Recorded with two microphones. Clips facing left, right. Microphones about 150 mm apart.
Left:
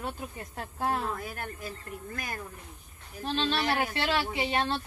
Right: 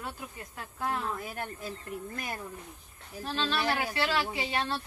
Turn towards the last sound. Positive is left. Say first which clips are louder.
# left 3 dB
turn(degrees=25)  # may be behind; listen again after turning